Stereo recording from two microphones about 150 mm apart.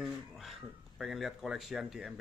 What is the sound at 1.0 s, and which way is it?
Speech, centre (ahead or behind).